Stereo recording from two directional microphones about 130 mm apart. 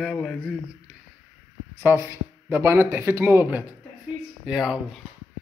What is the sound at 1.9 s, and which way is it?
A woman's voice, 20° right (ahead or behind).